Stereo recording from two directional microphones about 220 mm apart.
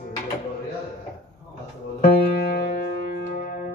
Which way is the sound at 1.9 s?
45° left (ahead or behind).